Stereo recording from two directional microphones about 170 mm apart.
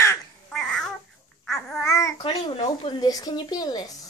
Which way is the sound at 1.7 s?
20° left (ahead or behind).